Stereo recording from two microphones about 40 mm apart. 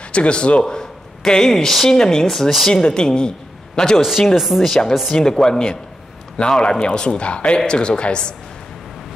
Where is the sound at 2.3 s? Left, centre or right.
Centre.